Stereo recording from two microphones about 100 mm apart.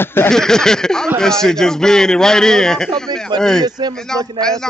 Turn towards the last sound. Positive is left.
turn(degrees=5)  # may be behind; listen again after turning